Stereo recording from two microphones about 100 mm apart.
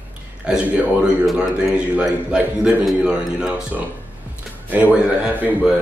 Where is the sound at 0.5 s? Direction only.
10° right (ahead or behind).